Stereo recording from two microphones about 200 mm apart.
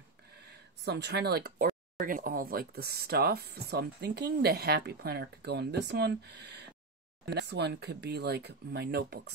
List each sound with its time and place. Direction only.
0.3 s speech: 55° right (ahead or behind)